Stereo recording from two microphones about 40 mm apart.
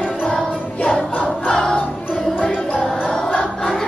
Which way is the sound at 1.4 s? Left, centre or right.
Centre.